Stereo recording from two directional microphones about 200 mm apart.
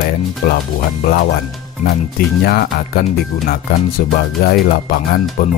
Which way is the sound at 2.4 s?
50° left (ahead or behind).